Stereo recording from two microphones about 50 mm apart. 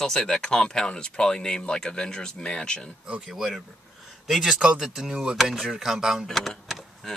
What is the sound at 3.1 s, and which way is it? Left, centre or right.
Speech, centre.